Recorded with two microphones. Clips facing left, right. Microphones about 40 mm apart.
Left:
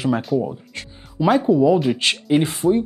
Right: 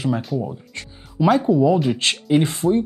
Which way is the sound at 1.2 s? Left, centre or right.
Centre.